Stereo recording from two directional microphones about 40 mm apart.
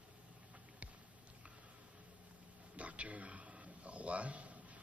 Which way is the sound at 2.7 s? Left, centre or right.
Right.